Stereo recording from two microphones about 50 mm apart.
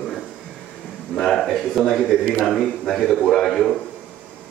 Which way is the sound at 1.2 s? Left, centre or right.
Centre.